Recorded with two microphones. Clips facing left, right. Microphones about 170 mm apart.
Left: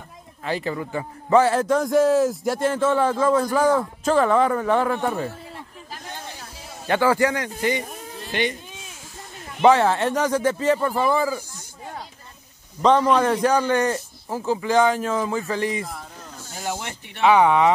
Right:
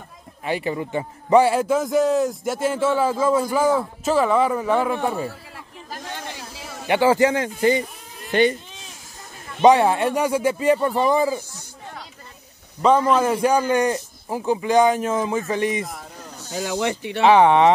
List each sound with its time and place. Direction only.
0.5 s a man's voice: 15° right (ahead or behind)
6.1 s a sound: 85° right
6.9 s a man's voice: 20° right (ahead or behind); by 8.5 s 40° right (ahead or behind)
9.6 s a man's voice: 15° right (ahead or behind)
12.8 s a man's voice: 5° right (ahead or behind)
16.5 s speech: 90° right
17.2 s a man's voice: 25° right (ahead or behind)